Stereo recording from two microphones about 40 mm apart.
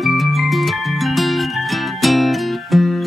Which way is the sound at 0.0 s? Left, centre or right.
Centre.